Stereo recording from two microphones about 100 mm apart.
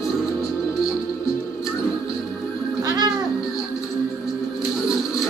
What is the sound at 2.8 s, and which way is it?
Music, 40° right (ahead or behind).